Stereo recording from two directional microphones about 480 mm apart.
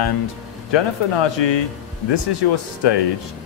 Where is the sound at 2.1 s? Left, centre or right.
Left.